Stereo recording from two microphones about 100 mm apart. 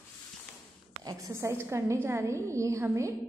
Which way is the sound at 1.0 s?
35° right (ahead or behind).